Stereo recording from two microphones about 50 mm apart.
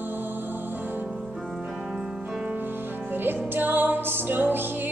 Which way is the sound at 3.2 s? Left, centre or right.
Right.